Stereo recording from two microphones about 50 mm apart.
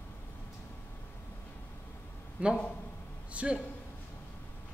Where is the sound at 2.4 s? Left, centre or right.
Right.